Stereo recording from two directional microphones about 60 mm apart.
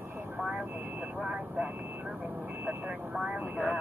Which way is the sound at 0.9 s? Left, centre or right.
Centre.